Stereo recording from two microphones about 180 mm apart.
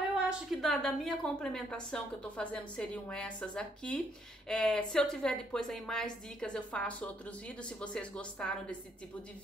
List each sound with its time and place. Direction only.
0.3 s speech: centre (ahead or behind)